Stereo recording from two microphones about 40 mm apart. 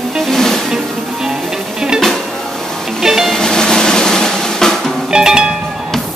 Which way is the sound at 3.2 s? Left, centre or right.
Centre.